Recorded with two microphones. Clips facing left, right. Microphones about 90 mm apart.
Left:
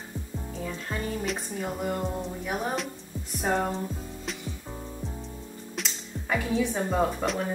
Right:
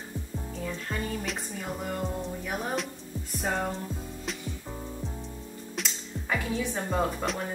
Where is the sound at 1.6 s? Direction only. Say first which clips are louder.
Left 4 dB; 15° left (ahead or behind).